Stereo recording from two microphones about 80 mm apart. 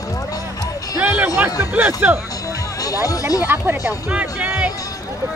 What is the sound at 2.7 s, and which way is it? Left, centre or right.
Speech, left.